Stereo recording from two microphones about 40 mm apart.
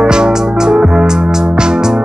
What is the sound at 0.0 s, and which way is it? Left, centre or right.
Music, centre.